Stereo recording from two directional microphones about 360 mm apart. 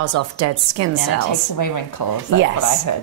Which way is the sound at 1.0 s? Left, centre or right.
Left.